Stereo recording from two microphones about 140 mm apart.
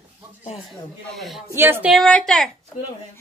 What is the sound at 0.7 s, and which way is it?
Speech, centre (ahead or behind).